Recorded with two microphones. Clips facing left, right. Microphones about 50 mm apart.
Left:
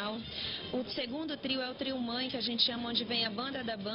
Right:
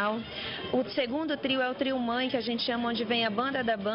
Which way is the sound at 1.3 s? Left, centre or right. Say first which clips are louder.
Right 8 dB; right.